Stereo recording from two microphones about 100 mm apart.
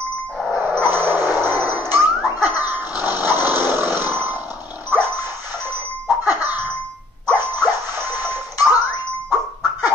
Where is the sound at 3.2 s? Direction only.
40° left (ahead or behind).